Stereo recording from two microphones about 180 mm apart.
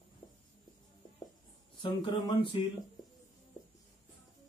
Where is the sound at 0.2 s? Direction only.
25° left (ahead or behind).